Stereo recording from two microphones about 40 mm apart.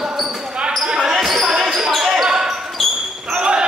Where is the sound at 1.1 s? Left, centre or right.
Centre; by 3.6 s right.